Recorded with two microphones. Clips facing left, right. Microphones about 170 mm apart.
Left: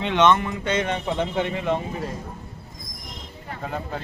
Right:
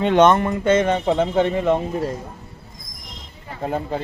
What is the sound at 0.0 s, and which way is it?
Speech, 45° right (ahead or behind).